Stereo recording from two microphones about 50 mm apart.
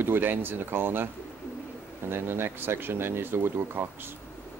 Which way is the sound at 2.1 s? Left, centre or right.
Right.